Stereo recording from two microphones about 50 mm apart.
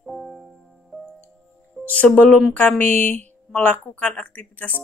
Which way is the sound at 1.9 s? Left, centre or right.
Left.